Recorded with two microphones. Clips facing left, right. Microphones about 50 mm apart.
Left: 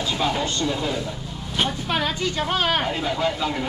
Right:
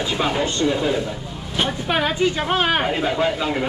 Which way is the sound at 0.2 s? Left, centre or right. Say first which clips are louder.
Right 4 dB; centre.